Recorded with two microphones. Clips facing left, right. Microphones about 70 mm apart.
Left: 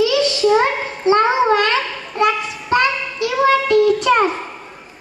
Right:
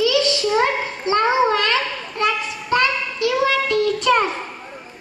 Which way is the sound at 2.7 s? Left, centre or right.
Centre.